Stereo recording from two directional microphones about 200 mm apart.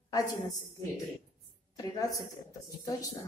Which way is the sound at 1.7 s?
20° left (ahead or behind).